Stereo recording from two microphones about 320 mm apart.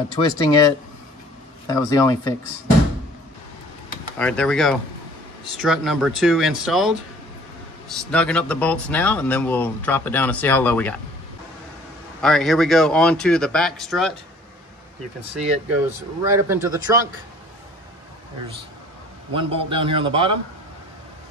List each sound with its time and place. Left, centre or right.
0.1 s speech: centre
1.7 s speech: centre
4.2 s speech: centre
8.0 s speech: centre
12.2 s speech: centre
16.3 s a man's voice: centre
19.3 s a man's voice: centre